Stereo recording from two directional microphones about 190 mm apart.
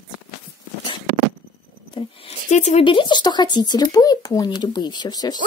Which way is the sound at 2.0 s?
35° left (ahead or behind).